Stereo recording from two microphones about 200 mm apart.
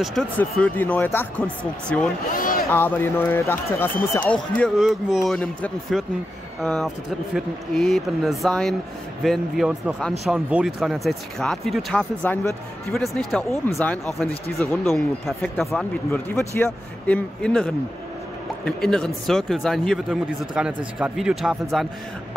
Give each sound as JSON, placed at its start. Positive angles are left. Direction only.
{"t": 0.0, "sound": "a man's voice", "side_deg": 0}
{"t": 2.3, "sound": "a sound", "side_deg": 45}
{"t": 2.7, "sound": "a man's voice", "side_deg": 10}
{"t": 18.8, "sound": "speech", "side_deg": 0}